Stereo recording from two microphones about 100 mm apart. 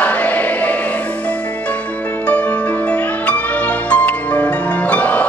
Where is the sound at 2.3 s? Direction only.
15° left (ahead or behind).